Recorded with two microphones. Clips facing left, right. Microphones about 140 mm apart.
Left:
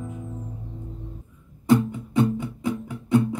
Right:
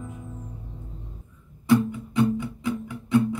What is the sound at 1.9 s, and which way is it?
Music, 40° left (ahead or behind).